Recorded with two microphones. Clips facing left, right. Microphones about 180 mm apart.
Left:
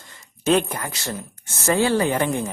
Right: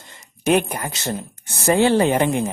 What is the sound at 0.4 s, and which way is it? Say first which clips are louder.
Speech: right 1 dB; 15° right (ahead or behind).